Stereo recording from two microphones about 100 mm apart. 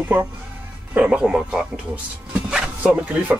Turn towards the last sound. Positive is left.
turn(degrees=-15)  # may be behind; listen again after turning